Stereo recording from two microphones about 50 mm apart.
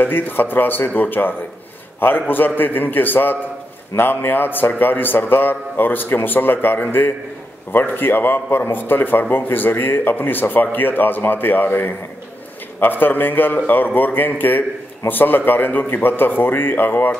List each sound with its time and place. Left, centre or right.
0.0 s a man's voice: left